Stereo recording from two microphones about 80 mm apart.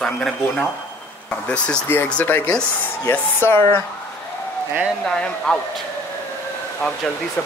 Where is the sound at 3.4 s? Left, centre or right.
Left.